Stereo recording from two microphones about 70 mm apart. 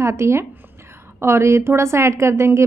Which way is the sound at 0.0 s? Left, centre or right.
Right.